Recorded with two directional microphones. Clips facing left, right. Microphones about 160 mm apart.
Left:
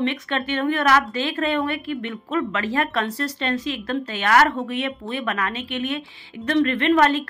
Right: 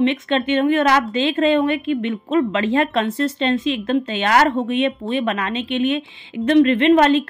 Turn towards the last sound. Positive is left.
turn(degrees=-20)  # may be behind; listen again after turning